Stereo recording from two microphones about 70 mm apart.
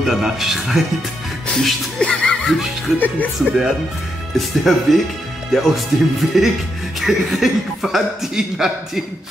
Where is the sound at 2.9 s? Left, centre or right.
Left.